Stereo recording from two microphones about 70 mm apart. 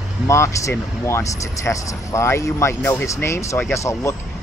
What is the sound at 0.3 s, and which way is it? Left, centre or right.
Speech, left.